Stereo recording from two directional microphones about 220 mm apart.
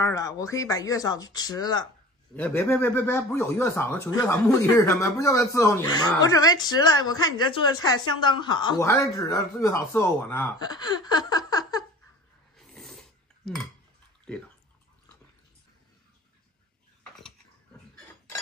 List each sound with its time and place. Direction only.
0.0 s speech: 15° left (ahead or behind)
2.3 s speech: 10° left (ahead or behind)
12.5 s roar: 5° left (ahead or behind)